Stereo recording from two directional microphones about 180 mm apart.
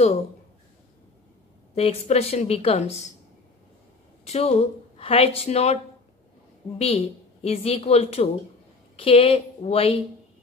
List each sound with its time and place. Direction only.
1.8 s a woman's voice: 35° left (ahead or behind)
4.2 s speech: 35° left (ahead or behind)
6.8 s a woman's voice: 35° left (ahead or behind)